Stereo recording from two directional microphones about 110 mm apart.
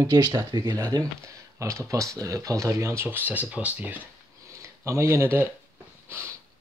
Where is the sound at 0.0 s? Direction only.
35° right (ahead or behind); by 5.5 s 20° right (ahead or behind).